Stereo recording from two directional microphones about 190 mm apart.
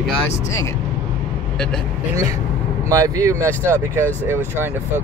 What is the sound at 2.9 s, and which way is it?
Speech, 15° right (ahead or behind).